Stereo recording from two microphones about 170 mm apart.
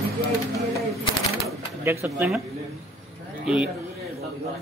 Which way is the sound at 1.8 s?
10° right (ahead or behind).